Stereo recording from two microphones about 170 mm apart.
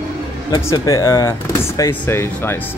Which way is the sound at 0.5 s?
15° left (ahead or behind).